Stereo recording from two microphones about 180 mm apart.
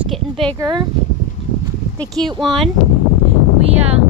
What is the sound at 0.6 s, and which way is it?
Speech, 25° right (ahead or behind).